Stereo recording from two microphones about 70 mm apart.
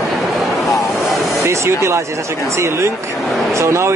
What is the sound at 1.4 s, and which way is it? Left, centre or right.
Speech, right.